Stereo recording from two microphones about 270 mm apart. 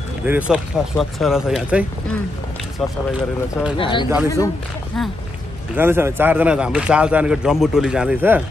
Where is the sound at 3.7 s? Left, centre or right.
Centre.